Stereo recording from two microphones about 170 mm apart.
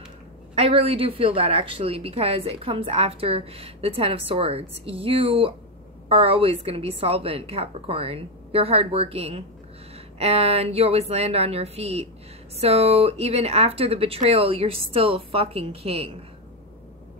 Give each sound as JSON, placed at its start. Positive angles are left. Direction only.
{"t": 0.6, "sound": "a woman's voice", "side_deg": -35}